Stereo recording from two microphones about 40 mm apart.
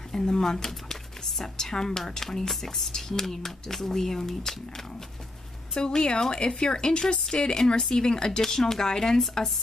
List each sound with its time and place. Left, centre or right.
0.1 s a woman's voice: centre
5.8 s a woman's voice: left